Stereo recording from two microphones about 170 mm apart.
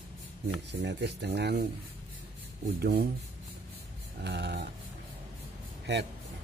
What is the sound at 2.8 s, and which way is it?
Speech, 65° right (ahead or behind).